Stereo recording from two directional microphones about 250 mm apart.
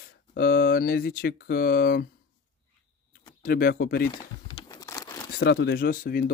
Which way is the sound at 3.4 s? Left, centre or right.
Left.